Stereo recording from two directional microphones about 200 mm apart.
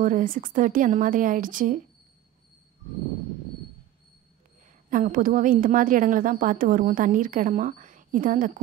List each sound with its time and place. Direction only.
0.0 s a woman's voice: 40° right (ahead or behind)
4.8 s a woman's voice: 40° right (ahead or behind)